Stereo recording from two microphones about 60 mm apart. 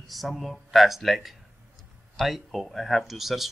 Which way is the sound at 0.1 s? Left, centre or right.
Centre.